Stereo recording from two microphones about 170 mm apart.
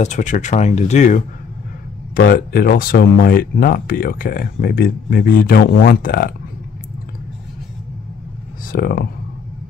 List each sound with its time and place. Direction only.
0.0 s speech: 45° left (ahead or behind)
2.1 s speech: 60° left (ahead or behind)
8.7 s speech: 60° left (ahead or behind)